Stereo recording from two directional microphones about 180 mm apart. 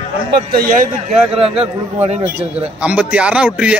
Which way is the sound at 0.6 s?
50° right (ahead or behind).